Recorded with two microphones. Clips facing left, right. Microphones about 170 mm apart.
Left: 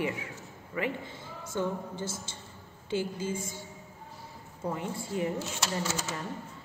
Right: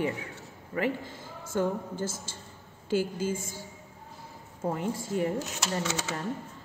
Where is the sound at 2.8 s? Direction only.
5° right (ahead or behind).